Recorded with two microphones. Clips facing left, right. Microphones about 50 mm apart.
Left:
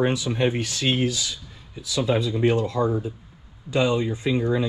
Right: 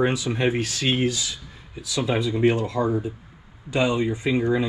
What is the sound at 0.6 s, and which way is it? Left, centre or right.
Speech, right.